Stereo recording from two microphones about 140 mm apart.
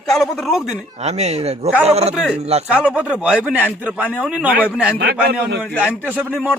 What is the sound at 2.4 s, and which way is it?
Speech, 50° right (ahead or behind).